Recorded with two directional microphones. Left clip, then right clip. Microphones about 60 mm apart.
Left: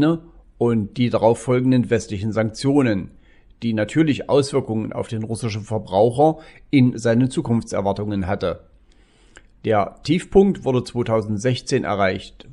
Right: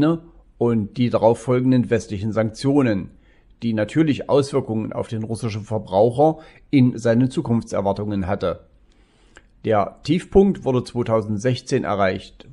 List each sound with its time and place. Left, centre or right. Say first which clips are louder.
0.0 s speech: even; left